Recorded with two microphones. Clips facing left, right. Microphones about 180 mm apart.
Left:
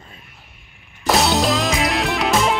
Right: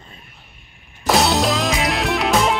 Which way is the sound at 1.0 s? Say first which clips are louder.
Even; centre (ahead or behind).